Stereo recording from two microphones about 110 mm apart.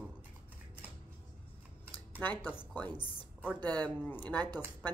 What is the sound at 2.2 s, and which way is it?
A woman's voice, 15° left (ahead or behind).